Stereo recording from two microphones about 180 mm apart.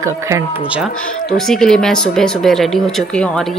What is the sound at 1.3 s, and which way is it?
Speech, 5° left (ahead or behind).